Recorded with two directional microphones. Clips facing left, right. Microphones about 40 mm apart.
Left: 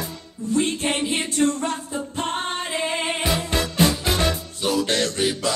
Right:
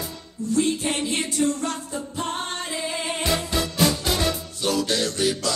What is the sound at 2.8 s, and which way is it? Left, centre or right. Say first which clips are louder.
Music: left 3 dB; left.